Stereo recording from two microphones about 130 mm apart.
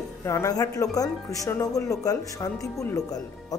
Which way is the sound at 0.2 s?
25° left (ahead or behind).